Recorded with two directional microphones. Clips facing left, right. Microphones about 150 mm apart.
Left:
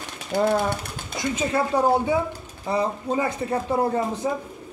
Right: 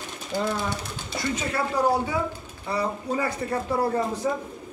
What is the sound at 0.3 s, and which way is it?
Speech, 65° left (ahead or behind).